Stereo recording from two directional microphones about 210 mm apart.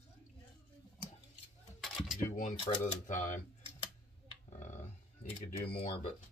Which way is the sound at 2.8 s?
35° left (ahead or behind).